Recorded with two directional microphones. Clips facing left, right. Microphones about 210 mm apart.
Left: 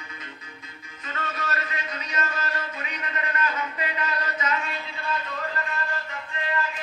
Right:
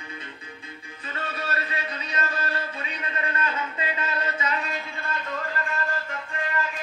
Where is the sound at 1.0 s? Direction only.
30° right (ahead or behind).